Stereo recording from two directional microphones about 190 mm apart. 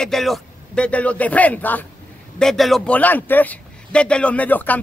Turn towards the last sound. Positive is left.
turn(degrees=10)  # may be behind; listen again after turning